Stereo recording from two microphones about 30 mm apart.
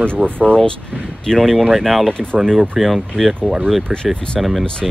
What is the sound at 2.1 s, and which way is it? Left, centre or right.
Speech, left.